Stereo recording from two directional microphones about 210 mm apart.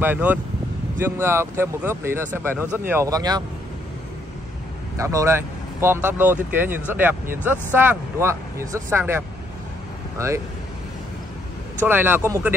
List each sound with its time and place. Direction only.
0.0 s speech: 10° right (ahead or behind)
2.5 s speech: 10° left (ahead or behind)
2.9 s speech: 15° right (ahead or behind)
4.9 s speech: 15° right (ahead or behind)
11.8 s speech: 10° right (ahead or behind)